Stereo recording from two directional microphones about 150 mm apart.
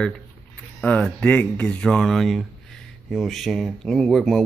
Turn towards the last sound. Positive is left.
turn(degrees=0)  # may be behind; listen again after turning